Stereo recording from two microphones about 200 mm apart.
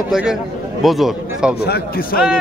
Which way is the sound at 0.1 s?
5° right (ahead or behind).